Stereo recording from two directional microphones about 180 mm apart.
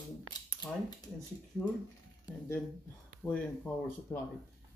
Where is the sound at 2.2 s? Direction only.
15° left (ahead or behind).